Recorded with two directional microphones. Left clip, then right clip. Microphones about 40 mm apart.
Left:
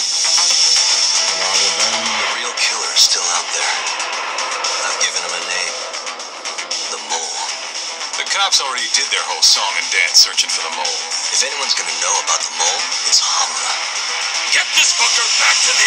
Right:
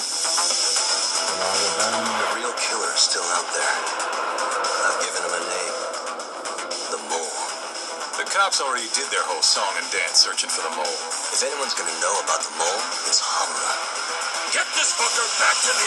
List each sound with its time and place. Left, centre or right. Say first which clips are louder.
0.0 s music: left 8 dB; right
2.6 s a sound: left 9 dB; right
4.6 s music: left 5 dB; right
8.5 s speech: left 6 dB; right
9.6 s speech: left 7 dB; right